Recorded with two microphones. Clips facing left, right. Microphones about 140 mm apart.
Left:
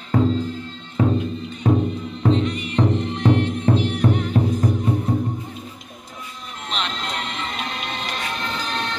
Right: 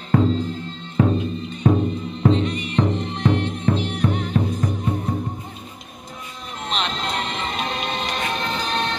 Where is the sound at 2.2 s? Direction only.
20° right (ahead or behind).